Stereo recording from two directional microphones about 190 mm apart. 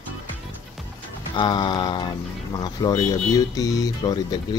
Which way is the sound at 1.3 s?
25° left (ahead or behind).